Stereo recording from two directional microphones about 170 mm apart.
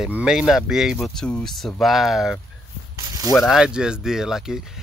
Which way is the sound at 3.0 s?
20° right (ahead or behind).